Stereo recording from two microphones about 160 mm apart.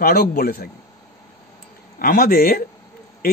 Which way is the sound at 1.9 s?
65° left (ahead or behind).